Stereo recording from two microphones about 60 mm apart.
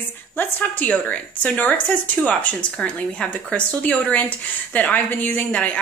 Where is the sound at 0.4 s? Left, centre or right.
Left.